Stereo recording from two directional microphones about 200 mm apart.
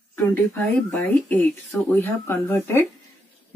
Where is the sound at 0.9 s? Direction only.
5° left (ahead or behind).